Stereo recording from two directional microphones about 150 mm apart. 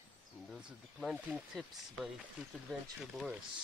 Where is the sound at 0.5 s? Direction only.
Centre (ahead or behind).